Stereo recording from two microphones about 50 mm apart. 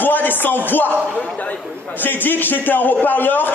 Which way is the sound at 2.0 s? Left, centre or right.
Left.